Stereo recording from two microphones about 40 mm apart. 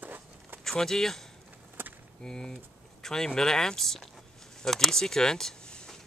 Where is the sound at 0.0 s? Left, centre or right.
Right.